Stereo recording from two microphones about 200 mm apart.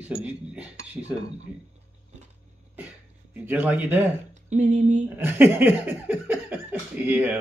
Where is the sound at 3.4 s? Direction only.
10° right (ahead or behind).